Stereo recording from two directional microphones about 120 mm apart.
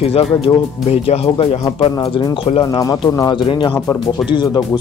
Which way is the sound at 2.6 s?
30° left (ahead or behind).